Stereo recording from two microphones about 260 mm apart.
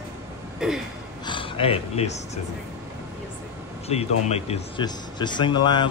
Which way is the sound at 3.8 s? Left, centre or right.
Left.